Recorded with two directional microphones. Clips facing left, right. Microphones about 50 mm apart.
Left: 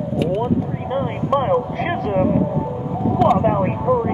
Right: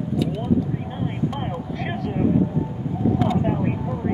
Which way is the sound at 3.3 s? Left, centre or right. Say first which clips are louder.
Left 6 dB; left.